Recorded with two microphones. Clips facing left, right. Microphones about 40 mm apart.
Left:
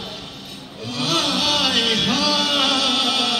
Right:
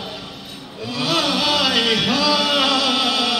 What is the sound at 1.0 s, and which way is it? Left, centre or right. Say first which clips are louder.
Chant: right 1 dB; centre.